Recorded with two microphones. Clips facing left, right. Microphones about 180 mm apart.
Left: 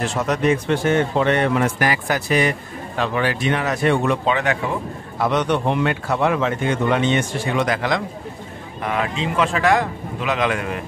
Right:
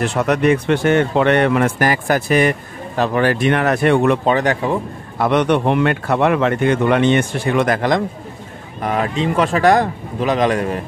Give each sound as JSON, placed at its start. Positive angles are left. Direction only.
{"t": 0.0, "sound": "speech", "side_deg": -60}
{"t": 1.8, "sound": "speech", "side_deg": -45}
{"t": 4.3, "sound": "speech", "side_deg": -35}
{"t": 5.2, "sound": "speech", "side_deg": -60}